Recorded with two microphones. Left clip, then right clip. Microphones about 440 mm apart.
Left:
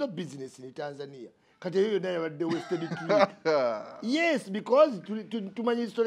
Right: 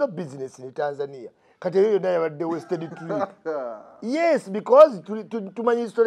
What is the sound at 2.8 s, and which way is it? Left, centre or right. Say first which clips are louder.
A man's voice: left 3 dB; left.